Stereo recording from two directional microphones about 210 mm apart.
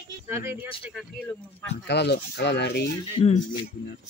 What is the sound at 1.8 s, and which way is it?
Speech, 55° left (ahead or behind).